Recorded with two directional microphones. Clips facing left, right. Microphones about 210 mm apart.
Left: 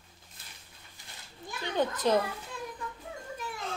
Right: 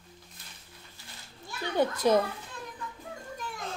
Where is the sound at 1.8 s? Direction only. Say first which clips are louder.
Right 3 dB; 10° right (ahead or behind).